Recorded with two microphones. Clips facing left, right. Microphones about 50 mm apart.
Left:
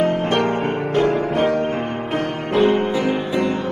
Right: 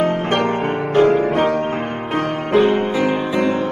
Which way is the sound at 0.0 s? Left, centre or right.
Right.